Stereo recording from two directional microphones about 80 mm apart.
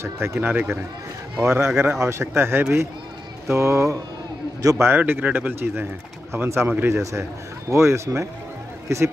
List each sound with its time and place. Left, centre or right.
0.0 s speech: right
0.4 s speech: right
1.4 s speech: right